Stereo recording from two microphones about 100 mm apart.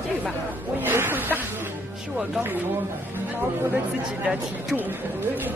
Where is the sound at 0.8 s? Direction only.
20° right (ahead or behind).